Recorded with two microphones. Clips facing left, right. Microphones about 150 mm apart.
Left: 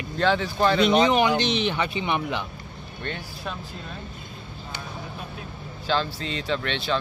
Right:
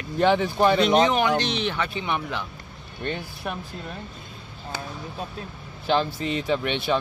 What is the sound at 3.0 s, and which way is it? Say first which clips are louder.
Speech: right 4 dB; 15° right (ahead or behind).